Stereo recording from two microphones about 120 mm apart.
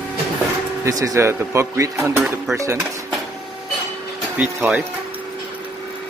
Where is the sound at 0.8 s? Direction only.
30° right (ahead or behind).